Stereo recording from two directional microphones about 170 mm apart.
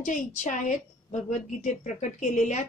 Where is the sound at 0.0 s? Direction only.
50° left (ahead or behind).